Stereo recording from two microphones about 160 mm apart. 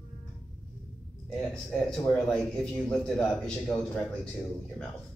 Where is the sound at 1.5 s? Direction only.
5° left (ahead or behind).